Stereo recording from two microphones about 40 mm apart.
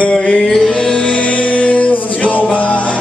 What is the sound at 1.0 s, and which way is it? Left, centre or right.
Music, left.